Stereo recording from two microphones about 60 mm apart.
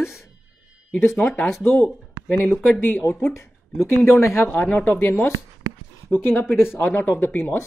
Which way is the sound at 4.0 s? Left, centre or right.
Left.